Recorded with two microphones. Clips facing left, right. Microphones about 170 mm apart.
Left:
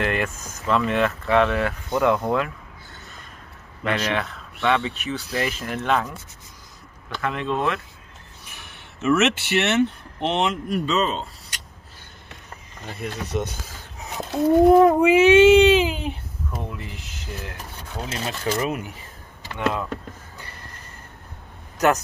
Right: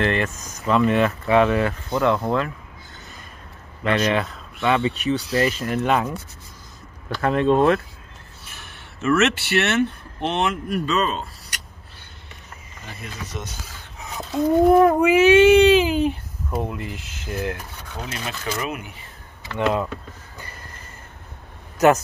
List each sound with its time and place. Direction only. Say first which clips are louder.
0.0 s speech: right 2 dB; 5° left (ahead or behind)
1.9 s speech: left 2 dB; 15° left (ahead or behind)
3.8 s speech: right 4 dB; centre (ahead or behind)
7.2 s speech: right 8 dB; 40° right (ahead or behind)
8.5 s speech: right 1 dB; 15° left (ahead or behind)
13.0 s speech: left 7 dB; 65° left (ahead or behind)
14.8 s speech: even; 20° left (ahead or behind)
16.8 s speech: right 4 dB; centre (ahead or behind)
18.1 s speech: left 4 dB; 35° left (ahead or behind)
21.7 s speech: right 4 dB; centre (ahead or behind)